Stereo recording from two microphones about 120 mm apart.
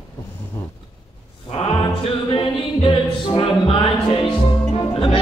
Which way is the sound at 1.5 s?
50° left (ahead or behind).